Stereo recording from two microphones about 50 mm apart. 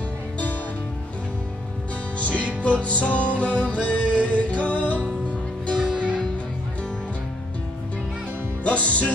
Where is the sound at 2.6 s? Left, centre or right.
Left.